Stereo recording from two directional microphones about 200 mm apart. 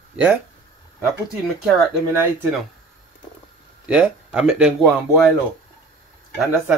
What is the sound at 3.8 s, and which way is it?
Speech, 5° right (ahead or behind).